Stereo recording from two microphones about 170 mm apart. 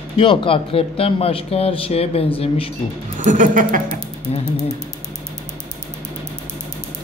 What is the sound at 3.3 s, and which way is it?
Speech, 50° right (ahead or behind).